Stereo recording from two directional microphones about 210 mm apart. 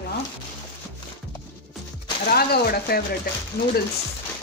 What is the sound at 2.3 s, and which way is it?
Speech, 50° left (ahead or behind).